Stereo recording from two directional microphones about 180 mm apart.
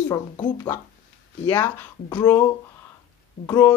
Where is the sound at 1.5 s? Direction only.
15° left (ahead or behind).